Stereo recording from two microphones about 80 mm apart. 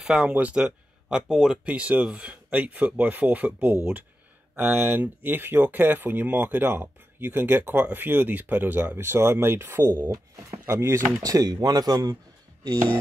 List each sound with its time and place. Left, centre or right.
0.0 s speech: centre
0.3 s speech: centre
0.6 s speech: centre; by 11.0 s right
11.1 s speech: right